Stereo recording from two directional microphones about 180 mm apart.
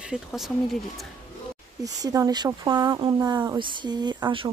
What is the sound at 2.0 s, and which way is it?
Speech, 20° right (ahead or behind).